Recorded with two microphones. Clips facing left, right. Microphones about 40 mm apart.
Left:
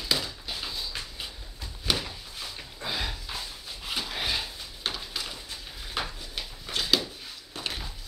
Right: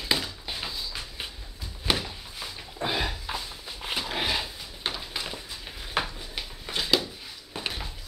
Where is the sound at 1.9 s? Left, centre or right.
Centre.